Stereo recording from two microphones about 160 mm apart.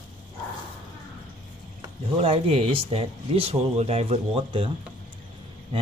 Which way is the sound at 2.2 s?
35° right (ahead or behind).